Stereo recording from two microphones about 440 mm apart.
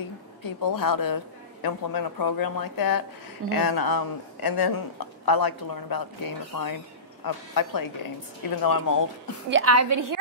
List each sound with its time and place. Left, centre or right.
0.4 s a man's voice: left
9.5 s a woman's voice: right